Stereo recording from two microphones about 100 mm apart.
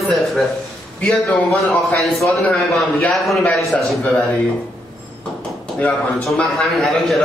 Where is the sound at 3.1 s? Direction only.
Centre (ahead or behind).